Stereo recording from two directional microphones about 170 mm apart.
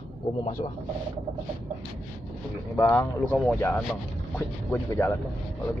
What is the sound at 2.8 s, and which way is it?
Speech, 15° left (ahead or behind).